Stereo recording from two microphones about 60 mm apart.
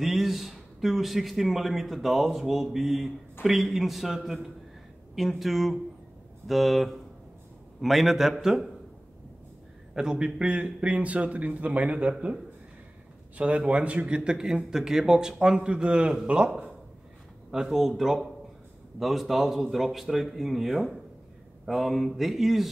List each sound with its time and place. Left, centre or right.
0.0 s a man's voice: centre
9.9 s a man's voice: centre
13.4 s a man's voice: centre